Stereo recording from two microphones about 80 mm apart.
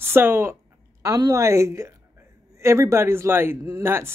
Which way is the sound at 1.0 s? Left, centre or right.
Right.